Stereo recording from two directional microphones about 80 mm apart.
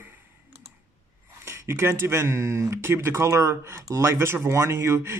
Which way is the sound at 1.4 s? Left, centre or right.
Right.